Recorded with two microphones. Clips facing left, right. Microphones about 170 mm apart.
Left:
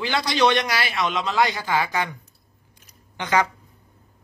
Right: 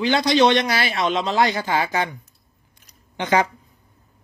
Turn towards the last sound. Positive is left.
turn(degrees=-25)  # may be behind; listen again after turning